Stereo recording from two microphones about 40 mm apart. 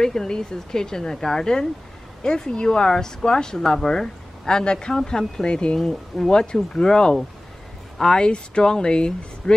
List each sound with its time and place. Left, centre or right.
0.0 s speech: centre
5.9 s speech: centre
6.3 s speech: left